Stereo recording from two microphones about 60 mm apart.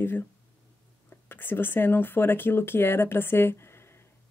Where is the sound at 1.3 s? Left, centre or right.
Left.